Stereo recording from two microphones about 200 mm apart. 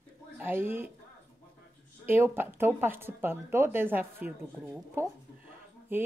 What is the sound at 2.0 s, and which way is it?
Speech, 10° right (ahead or behind).